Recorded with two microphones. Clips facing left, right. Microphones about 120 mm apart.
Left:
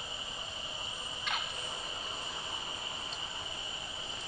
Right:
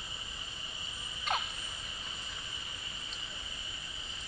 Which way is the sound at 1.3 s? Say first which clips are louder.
Right 5 dB; 40° right (ahead or behind).